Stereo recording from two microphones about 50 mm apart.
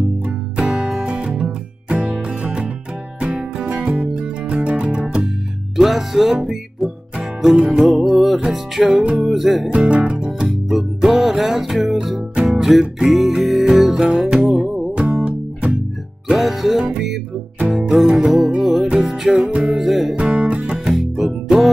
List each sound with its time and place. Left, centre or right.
0.2 s music: right
5.8 s music: centre
9.7 s music: right
10.5 s music: centre
15.0 s music: right
16.3 s music: centre
19.4 s music: centre
19.8 s music: centre
20.2 s music: right
20.9 s music: centre